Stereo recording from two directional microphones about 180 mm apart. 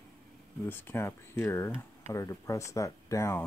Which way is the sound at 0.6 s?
10° left (ahead or behind).